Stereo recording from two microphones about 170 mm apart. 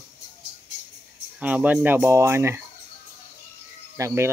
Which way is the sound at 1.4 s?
10° right (ahead or behind).